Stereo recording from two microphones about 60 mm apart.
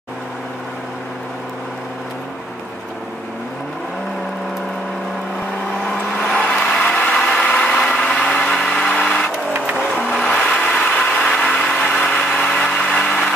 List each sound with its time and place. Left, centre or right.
5.9 s vehicle: centre
10.4 s vehicle: centre
11.3 s a sound: centre
12.0 s vehicle: centre